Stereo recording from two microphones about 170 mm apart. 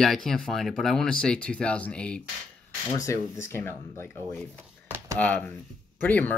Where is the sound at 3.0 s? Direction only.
15° left (ahead or behind).